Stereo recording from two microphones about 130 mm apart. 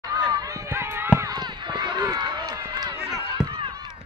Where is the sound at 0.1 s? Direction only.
35° right (ahead or behind).